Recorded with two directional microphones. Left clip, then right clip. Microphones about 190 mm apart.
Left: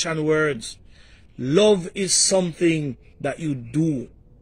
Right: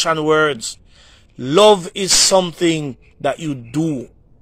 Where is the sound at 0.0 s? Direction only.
10° left (ahead or behind).